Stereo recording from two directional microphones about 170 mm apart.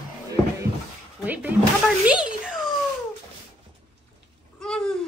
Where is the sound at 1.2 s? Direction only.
10° right (ahead or behind).